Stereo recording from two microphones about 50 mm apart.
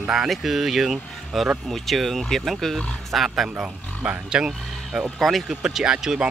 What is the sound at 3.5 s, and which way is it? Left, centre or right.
Speech, right.